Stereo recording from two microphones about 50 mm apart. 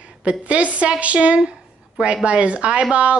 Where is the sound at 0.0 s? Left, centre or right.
Right.